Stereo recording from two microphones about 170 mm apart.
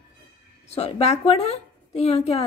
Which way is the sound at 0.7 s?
40° left (ahead or behind).